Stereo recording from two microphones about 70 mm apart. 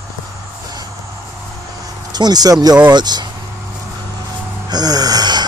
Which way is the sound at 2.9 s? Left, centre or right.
Right.